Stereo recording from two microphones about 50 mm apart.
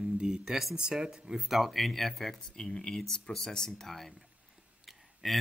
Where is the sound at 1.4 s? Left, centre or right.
Centre.